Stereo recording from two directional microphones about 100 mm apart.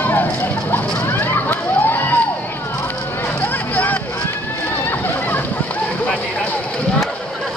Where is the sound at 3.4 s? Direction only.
15° left (ahead or behind).